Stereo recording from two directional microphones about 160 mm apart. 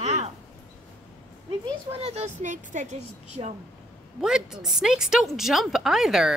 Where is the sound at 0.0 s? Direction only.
45° right (ahead or behind).